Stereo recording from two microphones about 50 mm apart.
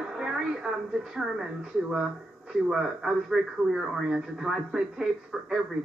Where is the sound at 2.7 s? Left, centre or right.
Centre.